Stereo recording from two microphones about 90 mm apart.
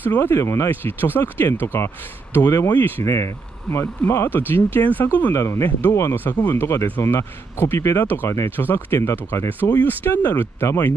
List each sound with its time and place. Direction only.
0.1 s speech: 25° left (ahead or behind)
5.3 s speech: 30° left (ahead or behind)